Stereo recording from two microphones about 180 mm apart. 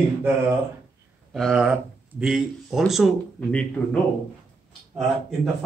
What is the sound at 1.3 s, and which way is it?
Speech, centre (ahead or behind).